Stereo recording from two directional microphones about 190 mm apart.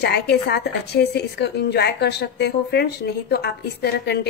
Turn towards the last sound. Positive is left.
turn(degrees=60)  # may be behind; listen again after turning